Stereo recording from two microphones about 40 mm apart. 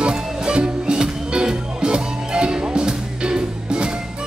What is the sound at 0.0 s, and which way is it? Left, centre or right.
Music, right.